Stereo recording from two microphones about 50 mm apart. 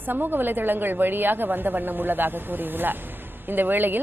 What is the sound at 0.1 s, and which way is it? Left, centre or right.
A woman's voice, right.